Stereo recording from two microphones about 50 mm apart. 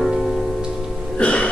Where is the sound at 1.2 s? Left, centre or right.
Left.